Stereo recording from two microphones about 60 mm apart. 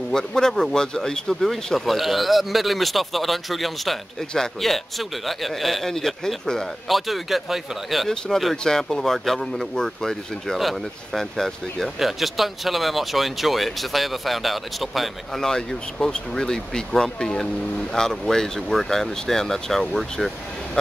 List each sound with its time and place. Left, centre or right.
0.1 s speech: centre
6.9 s speech: centre